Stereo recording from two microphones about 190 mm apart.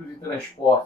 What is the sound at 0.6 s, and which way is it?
Speech, 25° left (ahead or behind).